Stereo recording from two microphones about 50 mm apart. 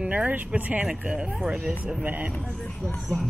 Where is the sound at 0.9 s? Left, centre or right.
Centre.